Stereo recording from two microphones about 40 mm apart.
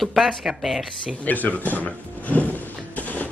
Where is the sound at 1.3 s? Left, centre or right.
Left.